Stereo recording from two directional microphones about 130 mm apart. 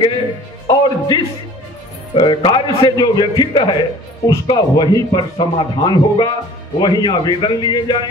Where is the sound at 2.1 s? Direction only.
35° left (ahead or behind).